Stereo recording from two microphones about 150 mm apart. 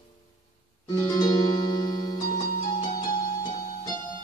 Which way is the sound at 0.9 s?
25° left (ahead or behind).